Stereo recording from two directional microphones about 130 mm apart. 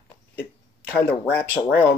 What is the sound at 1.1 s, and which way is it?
Speech, 15° left (ahead or behind).